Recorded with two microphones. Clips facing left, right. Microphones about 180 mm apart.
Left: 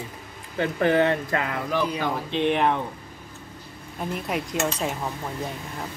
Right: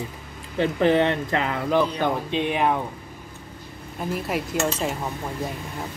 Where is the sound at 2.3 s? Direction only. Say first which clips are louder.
Left 4 dB; 10° right (ahead or behind).